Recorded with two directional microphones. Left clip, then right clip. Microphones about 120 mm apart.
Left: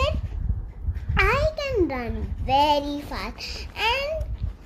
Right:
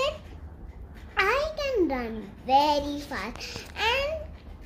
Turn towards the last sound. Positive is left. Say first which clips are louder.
# left 2 dB
turn(degrees=30)  # may be behind; listen again after turning